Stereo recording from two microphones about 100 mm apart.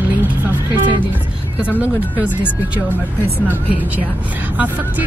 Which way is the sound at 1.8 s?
15° right (ahead or behind).